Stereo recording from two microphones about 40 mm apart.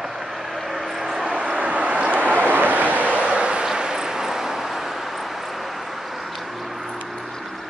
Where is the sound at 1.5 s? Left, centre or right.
Right; by 7.0 s centre.